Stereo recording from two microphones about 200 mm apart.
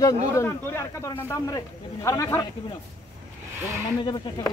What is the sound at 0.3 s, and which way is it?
Speech, 15° left (ahead or behind).